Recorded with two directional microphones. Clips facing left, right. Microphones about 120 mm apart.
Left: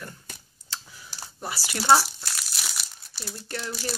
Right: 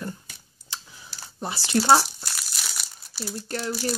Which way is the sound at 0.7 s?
15° right (ahead or behind).